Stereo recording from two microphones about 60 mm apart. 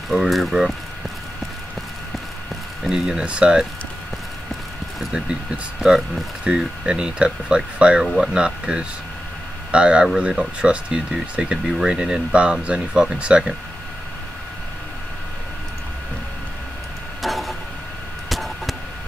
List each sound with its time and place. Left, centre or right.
0.1 s speech: centre
2.8 s speech: centre
5.8 s speech: centre
6.4 s speech: centre
17.2 s a sound: centre
18.3 s arrow: centre